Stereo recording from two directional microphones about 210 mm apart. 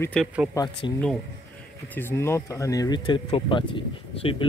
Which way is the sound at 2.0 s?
10° left (ahead or behind).